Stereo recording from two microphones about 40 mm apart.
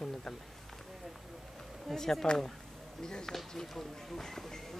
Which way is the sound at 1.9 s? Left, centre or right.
Centre.